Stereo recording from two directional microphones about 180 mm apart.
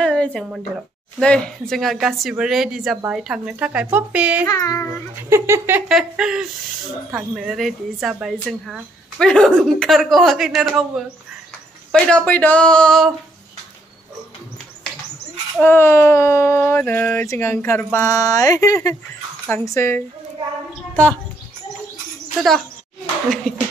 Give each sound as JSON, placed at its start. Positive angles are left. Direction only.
{"t": 0.0, "sound": "a sound", "side_deg": 5}
{"t": 1.2, "sound": "speech", "side_deg": 5}
{"t": 4.5, "sound": "speech", "side_deg": 20}
{"t": 5.3, "sound": "speech", "side_deg": -15}
{"t": 11.9, "sound": "speech", "side_deg": 5}
{"t": 15.6, "sound": "speech", "side_deg": 10}